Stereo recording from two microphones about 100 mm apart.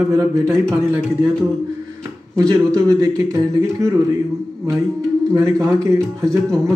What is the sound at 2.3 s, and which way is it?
A man's voice, 35° right (ahead or behind).